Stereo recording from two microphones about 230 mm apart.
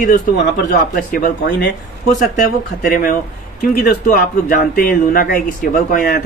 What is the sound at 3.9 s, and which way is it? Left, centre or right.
Speech, left.